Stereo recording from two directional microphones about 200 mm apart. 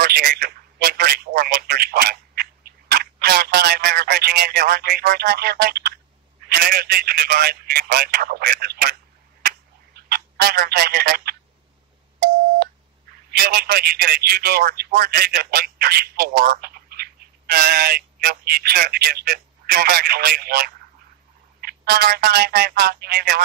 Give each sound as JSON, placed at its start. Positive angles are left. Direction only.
{"t": 0.0, "sound": "telephone", "side_deg": -50}
{"t": 2.9, "sound": "a man's voice", "side_deg": -50}
{"t": 10.0, "sound": "speech", "side_deg": -50}
{"t": 13.4, "sound": "a man's voice", "side_deg": -45}